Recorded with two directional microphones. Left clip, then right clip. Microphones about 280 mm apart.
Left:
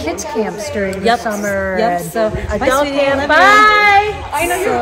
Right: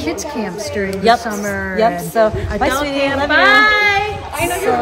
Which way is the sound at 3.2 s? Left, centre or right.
Centre.